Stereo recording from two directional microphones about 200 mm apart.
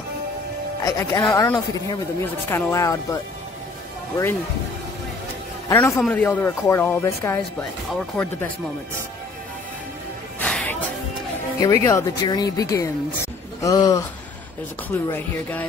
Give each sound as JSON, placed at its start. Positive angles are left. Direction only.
{"t": 0.8, "sound": "speech", "side_deg": 15}
{"t": 5.7, "sound": "speech", "side_deg": 10}
{"t": 10.4, "sound": "music", "side_deg": 5}
{"t": 11.6, "sound": "speech", "side_deg": 15}